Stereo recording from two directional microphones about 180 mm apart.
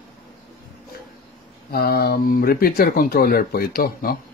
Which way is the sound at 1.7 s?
60° left (ahead or behind).